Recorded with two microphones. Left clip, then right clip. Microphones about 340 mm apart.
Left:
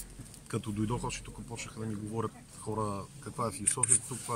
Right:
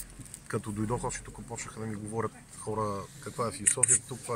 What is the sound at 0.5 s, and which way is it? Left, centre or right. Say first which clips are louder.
Speech: right 2 dB; centre.